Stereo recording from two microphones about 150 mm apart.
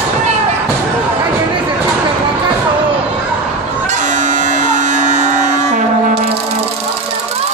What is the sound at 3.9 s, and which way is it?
Music, 55° right (ahead or behind).